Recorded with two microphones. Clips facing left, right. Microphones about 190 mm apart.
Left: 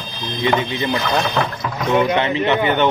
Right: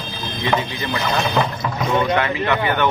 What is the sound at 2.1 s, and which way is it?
Speech, 25° left (ahead or behind).